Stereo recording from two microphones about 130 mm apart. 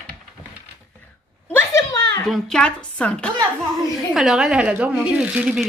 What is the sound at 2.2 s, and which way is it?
Speech, 5° left (ahead or behind).